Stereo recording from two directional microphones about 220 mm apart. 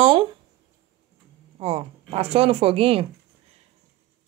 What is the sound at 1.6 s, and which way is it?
Speech, 25° right (ahead or behind).